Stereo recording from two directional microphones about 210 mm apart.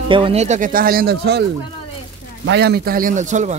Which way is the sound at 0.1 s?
25° right (ahead or behind).